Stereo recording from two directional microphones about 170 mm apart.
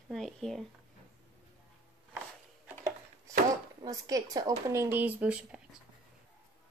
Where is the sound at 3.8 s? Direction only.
20° right (ahead or behind).